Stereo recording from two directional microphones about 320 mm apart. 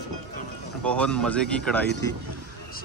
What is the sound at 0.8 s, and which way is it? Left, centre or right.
Speech, centre.